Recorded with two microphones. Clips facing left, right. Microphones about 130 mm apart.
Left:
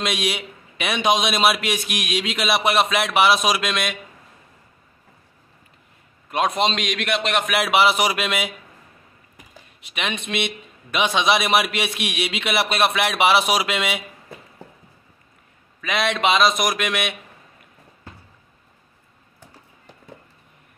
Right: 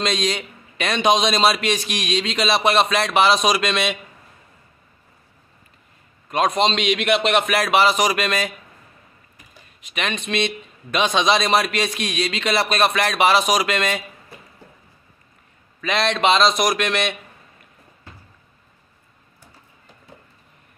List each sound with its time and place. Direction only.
0.0 s a man's voice: 5° left (ahead or behind)
6.3 s a man's voice: 5° left (ahead or behind)
7.4 s a man's voice: 10° left (ahead or behind)
9.9 s a man's voice: 10° left (ahead or behind)
15.8 s a man's voice: 5° left (ahead or behind)